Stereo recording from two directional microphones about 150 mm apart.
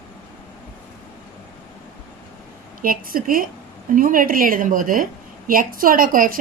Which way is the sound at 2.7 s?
70° right (ahead or behind).